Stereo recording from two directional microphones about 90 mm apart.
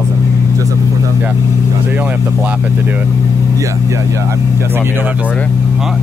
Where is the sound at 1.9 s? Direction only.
15° right (ahead or behind).